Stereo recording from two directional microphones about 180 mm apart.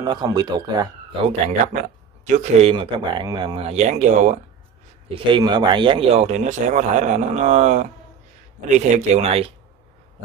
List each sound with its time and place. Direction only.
0.0 s speech: 20° right (ahead or behind)
1.7 s speech: 45° right (ahead or behind)
2.7 s speech: 25° right (ahead or behind); by 4.4 s 40° right (ahead or behind)
5.1 s speech: 25° right (ahead or behind)